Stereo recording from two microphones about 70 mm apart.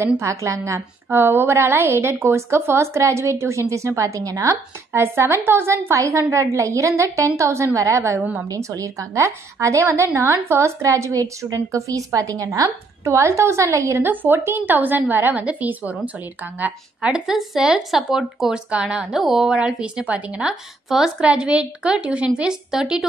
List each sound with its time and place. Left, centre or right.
0.2 s a woman's voice: right
5.0 s a woman's voice: right
9.8 s a woman's voice: right
13.0 s a woman's voice: right
14.0 s a woman's voice: right
17.1 s speech: centre